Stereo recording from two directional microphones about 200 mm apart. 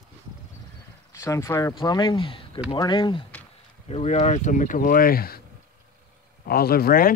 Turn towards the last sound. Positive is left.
turn(degrees=45)  # may be behind; listen again after turning